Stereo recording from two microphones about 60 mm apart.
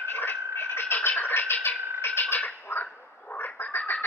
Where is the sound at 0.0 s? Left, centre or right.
Left.